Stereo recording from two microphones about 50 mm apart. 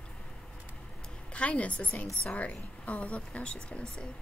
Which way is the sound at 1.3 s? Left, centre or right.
Left.